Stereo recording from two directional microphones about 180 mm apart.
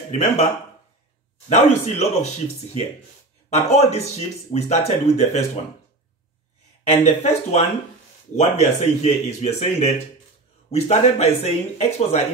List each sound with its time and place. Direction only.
0.1 s speech: 35° left (ahead or behind)
1.5 s speech: 40° left (ahead or behind)
6.9 s speech: 40° left (ahead or behind)